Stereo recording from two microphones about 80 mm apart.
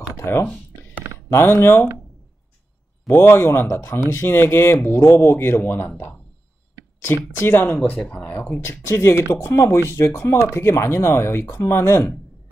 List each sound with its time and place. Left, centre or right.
0.1 s a sound: left
1.3 s speech: left
3.1 s speech: left
7.3 s speech: left